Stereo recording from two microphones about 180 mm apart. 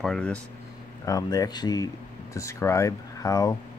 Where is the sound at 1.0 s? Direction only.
20° left (ahead or behind).